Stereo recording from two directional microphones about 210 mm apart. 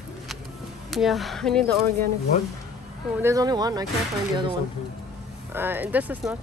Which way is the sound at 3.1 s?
15° right (ahead or behind).